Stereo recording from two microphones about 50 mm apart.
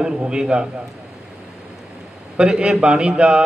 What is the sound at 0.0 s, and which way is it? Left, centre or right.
Speech, centre.